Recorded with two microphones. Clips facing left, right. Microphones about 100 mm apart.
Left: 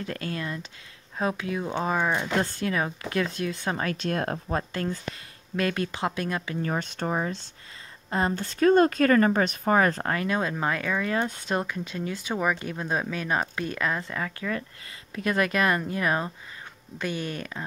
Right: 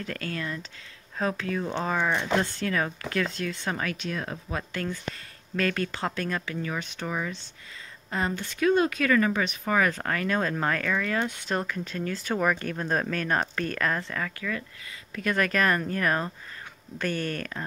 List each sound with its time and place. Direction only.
0.0 s speech: 25° left (ahead or behind)
4.1 s speech: 55° left (ahead or behind)
4.5 s speech: 35° left (ahead or behind)
5.1 s speech: 20° left (ahead or behind)
6.6 s speech: 40° left (ahead or behind)
8.4 s speech: 35° left (ahead or behind)
10.1 s speech: 15° left (ahead or behind)
14.1 s speech: 20° left (ahead or behind)